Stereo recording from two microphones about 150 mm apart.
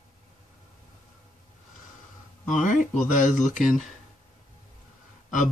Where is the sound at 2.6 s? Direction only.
55° left (ahead or behind).